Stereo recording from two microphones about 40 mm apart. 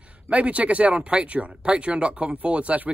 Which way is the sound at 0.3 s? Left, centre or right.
Right.